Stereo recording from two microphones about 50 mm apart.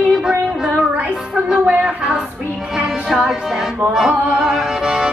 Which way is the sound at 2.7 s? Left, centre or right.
Centre.